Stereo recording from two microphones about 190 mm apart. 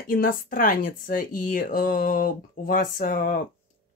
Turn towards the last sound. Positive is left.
turn(degrees=45)  # may be behind; listen again after turning